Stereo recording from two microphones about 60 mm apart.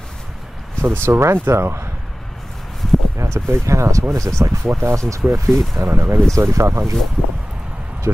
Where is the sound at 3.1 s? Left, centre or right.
Right.